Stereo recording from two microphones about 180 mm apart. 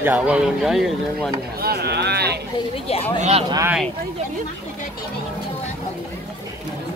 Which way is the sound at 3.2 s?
35° right (ahead or behind).